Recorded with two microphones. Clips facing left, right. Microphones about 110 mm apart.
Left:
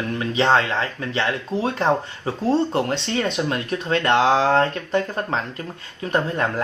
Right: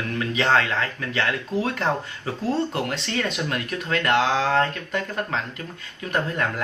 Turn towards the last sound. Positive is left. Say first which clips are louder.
# left 3 dB
turn(degrees=30)  # may be behind; listen again after turning